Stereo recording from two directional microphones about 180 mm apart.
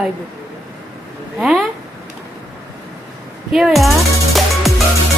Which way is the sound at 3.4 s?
Centre (ahead or behind).